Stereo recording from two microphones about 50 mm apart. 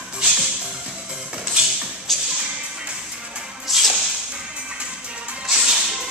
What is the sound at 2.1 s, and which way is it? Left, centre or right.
Music, centre.